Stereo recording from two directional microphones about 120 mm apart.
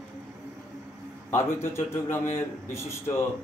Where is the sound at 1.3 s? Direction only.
20° left (ahead or behind).